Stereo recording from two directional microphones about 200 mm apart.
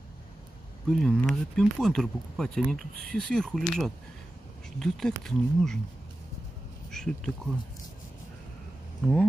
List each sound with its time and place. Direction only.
0.8 s speech: centre (ahead or behind)
6.9 s a sound: 5° left (ahead or behind)
9.0 s speech: centre (ahead or behind)